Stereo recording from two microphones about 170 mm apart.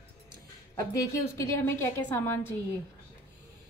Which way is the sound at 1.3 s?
15° left (ahead or behind).